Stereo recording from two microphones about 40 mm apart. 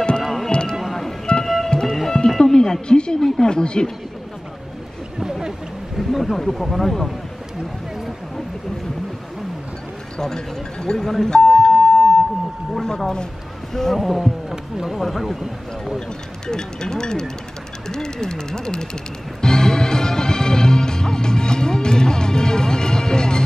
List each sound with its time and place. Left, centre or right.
0.2 s music: centre
0.5 s music: left
2.0 s music: centre
3.3 s speech: centre
5.9 s speech: centre
10.1 s speech: centre
13.7 s speech: centre
14.5 s speech: centre
15.0 s speech: centre
16.4 s speech: centre
19.4 s music: centre